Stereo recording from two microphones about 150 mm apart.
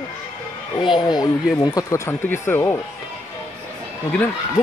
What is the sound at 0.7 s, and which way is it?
Speech, 30° left (ahead or behind).